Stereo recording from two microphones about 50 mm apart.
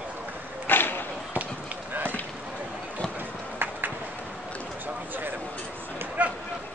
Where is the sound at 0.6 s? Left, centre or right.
Left.